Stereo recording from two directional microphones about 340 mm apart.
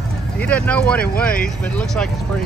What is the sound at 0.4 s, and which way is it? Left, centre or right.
Speech, centre.